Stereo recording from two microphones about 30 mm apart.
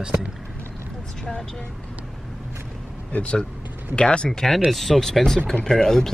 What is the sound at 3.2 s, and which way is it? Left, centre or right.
Speech, left.